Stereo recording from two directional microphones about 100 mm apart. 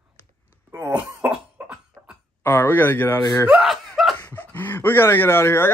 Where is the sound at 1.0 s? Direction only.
10° right (ahead or behind).